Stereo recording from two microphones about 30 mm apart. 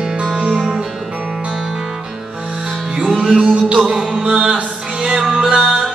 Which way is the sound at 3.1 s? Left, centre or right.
Right.